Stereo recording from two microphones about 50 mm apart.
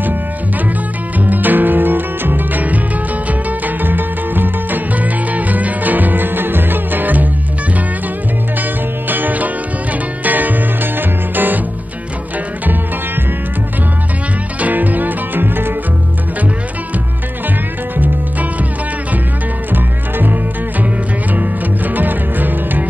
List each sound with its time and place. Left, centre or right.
1.2 s music: right
9.1 s music: right
14.6 s music: right
17.9 s music: right
19.7 s music: right